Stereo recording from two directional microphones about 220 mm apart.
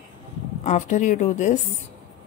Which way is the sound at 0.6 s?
30° left (ahead or behind).